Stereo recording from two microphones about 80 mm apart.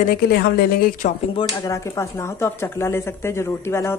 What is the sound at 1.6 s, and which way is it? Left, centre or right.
Speech, left.